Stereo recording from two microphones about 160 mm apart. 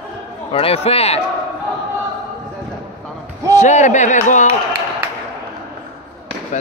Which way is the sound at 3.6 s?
50° left (ahead or behind).